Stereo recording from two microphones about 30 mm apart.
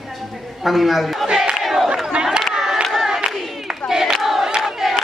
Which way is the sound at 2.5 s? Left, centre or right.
Centre.